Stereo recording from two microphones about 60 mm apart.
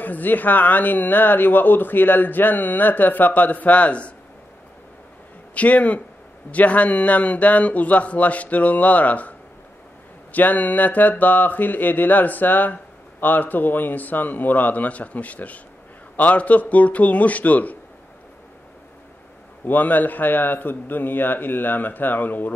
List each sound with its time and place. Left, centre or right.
0.0 s speech: left
5.5 s a man's voice: left
10.3 s a man's voice: left
19.6 s speech: left